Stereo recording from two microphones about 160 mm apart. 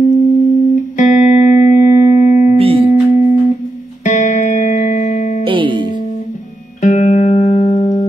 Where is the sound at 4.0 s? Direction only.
50° left (ahead or behind).